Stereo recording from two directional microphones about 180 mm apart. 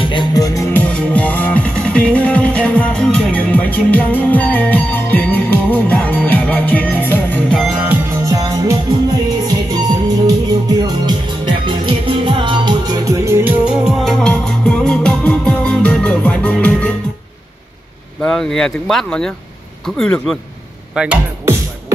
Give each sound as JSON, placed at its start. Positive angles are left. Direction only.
{"t": 0.0, "sound": "music", "side_deg": 25}
{"t": 0.8, "sound": "music", "side_deg": 5}
{"t": 7.8, "sound": "music", "side_deg": -15}
{"t": 18.2, "sound": "speech", "side_deg": 5}